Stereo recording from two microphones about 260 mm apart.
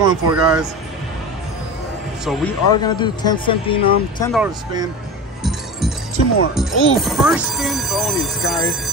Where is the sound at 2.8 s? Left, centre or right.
Centre.